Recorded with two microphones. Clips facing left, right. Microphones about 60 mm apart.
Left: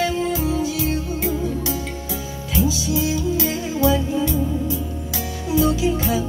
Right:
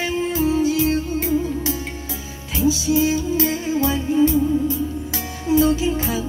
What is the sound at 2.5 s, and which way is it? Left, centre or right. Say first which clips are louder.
Music: right 3 dB; right.